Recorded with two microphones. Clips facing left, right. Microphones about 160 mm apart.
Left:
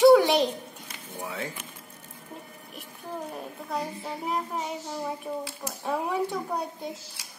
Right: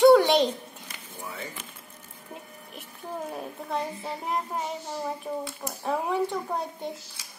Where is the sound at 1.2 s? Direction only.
90° left.